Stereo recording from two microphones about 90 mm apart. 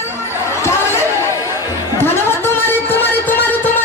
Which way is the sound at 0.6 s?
30° left (ahead or behind).